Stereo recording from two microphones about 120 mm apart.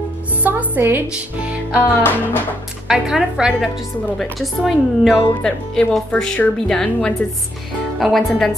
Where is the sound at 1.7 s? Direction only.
15° left (ahead or behind).